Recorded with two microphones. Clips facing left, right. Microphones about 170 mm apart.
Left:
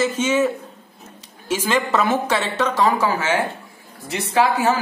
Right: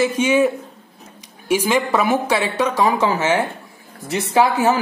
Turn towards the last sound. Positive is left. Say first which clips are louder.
# right 2 dB
turn(degrees=-20)  # may be behind; listen again after turning